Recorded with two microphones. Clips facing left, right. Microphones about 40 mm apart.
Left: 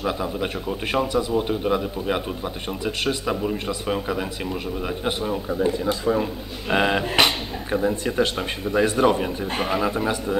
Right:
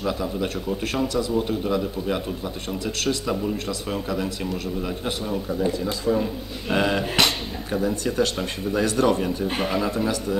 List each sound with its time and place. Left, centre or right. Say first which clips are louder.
0.0 s a man's voice: left 1 dB; left
9.4 s speech: left 1 dB; centre